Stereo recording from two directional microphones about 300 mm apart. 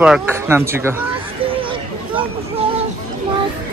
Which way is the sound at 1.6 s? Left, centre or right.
Centre.